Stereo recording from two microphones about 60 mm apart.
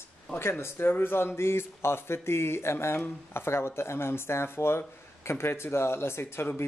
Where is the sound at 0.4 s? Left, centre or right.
Left.